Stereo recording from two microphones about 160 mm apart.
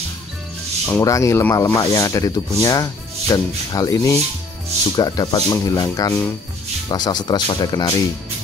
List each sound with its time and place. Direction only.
0.8 s speech: 20° left (ahead or behind)